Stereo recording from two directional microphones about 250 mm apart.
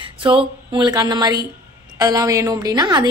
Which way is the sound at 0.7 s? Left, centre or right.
Centre.